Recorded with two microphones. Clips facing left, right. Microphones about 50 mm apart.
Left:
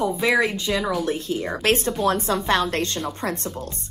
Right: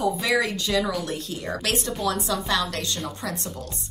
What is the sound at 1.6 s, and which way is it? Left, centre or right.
A woman's voice, left.